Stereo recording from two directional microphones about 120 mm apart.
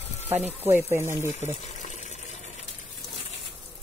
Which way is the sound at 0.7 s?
20° right (ahead or behind).